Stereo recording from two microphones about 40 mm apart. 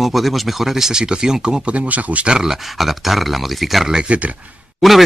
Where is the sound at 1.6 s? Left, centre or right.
Right.